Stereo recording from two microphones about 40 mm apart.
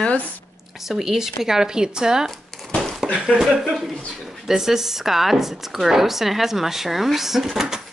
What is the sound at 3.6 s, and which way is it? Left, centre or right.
A woman's voice, centre.